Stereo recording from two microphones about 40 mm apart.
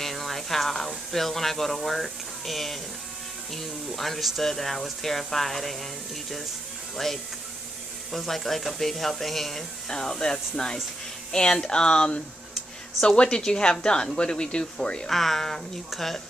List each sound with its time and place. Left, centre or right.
0.0 s a sound: centre
3.5 s speech: centre
8.1 s speech: centre
9.9 s speech: centre
15.0 s speech: centre